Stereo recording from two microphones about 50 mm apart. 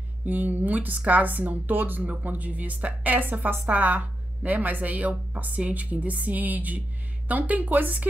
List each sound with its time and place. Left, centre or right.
0.2 s a woman's voice: right